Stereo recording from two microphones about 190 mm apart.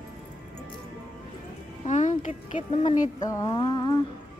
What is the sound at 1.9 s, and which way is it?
Speech, 40° left (ahead or behind).